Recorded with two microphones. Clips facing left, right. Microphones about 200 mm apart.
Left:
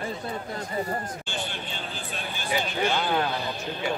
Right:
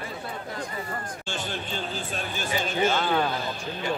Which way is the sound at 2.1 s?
45° right (ahead or behind).